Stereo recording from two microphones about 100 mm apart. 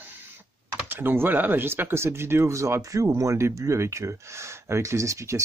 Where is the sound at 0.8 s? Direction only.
20° right (ahead or behind).